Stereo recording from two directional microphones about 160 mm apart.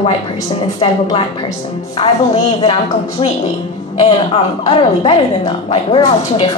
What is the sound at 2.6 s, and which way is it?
A woman's voice, 35° left (ahead or behind).